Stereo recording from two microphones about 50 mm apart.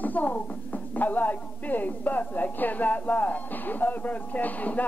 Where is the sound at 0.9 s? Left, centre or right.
Left.